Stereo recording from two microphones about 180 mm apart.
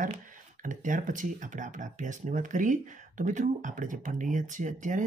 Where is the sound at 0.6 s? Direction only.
45° right (ahead or behind).